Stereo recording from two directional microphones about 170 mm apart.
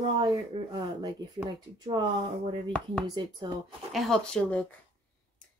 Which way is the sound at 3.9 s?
Centre (ahead or behind).